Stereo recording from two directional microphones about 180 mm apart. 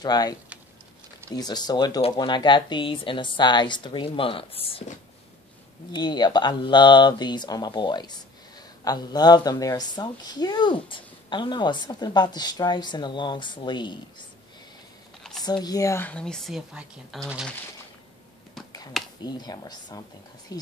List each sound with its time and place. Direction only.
0.0 s a woman's voice: 20° left (ahead or behind)
15.4 s speech: 20° left (ahead or behind); by 17.6 s centre (ahead or behind)
19.2 s a woman's voice: 20° left (ahead or behind)